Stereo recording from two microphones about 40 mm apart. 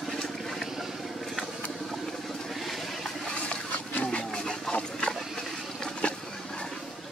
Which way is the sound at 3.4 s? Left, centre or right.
Left.